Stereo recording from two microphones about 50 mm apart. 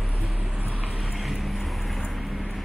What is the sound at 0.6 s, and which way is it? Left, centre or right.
Vehicle, right.